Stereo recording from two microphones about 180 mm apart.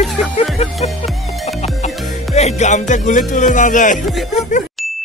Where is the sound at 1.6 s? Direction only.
35° left (ahead or behind).